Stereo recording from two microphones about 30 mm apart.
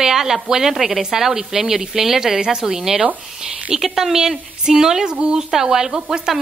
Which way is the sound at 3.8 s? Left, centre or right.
Centre.